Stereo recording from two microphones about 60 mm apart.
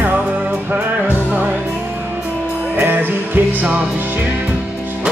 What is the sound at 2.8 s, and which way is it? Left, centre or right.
Music, right.